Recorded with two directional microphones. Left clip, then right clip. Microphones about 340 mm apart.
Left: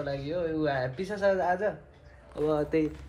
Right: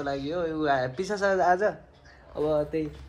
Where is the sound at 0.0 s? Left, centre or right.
Centre.